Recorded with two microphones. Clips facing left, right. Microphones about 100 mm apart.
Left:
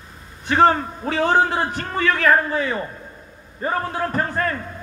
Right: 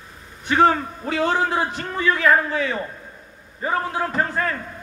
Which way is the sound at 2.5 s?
40° left (ahead or behind).